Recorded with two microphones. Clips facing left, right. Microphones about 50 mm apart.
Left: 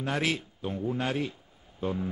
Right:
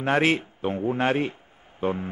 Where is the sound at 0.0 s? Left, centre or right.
Right.